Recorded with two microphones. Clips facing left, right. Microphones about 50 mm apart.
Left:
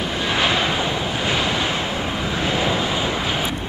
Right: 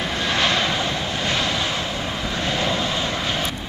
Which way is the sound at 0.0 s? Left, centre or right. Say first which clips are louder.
Left 1 dB; centre.